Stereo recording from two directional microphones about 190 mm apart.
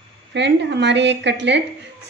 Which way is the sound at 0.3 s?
65° right (ahead or behind).